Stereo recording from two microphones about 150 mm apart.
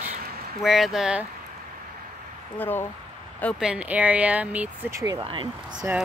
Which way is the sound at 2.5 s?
15° left (ahead or behind).